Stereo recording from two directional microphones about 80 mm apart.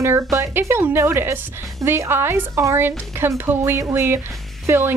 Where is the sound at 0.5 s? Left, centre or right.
Right.